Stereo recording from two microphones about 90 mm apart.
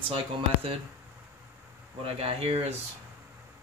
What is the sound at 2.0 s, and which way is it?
Speech, 90° right.